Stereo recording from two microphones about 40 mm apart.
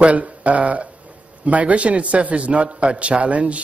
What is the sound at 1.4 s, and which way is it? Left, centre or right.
Speech, right.